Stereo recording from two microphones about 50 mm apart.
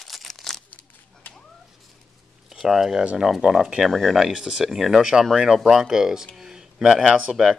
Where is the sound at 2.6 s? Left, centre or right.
Centre.